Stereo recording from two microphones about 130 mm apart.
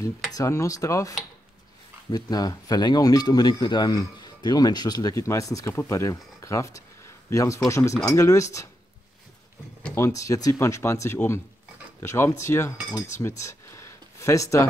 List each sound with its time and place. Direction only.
0.3 s speech: 25° left (ahead or behind)
9.9 s speech: 20° left (ahead or behind)
13.4 s a sound: 20° left (ahead or behind)